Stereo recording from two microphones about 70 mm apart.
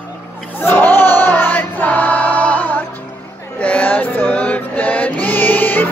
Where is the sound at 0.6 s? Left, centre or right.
Left.